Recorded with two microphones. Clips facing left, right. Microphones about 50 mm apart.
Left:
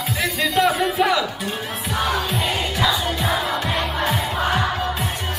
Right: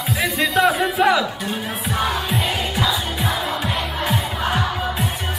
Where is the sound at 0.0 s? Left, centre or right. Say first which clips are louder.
Right 2 dB; centre.